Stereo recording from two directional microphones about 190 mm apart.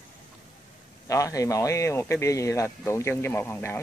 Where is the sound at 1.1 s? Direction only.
15° left (ahead or behind).